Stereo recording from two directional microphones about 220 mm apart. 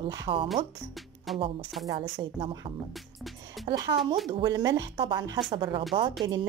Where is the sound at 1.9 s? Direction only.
20° right (ahead or behind).